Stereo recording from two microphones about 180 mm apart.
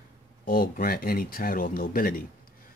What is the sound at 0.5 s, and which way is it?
Speech, 55° left (ahead or behind).